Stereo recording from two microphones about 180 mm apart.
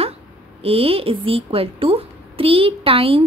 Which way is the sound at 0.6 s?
30° right (ahead or behind).